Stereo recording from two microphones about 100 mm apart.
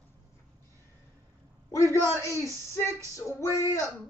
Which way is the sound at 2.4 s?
30° right (ahead or behind).